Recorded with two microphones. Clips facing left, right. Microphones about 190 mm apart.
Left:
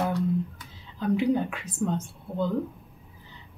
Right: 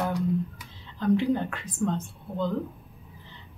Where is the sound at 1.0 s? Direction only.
10° left (ahead or behind).